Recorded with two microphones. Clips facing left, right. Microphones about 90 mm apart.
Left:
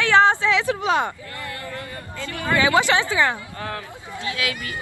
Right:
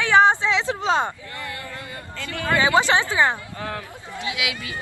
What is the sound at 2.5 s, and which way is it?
Speech, 20° right (ahead or behind).